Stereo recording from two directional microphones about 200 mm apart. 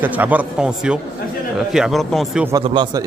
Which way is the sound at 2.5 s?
20° right (ahead or behind).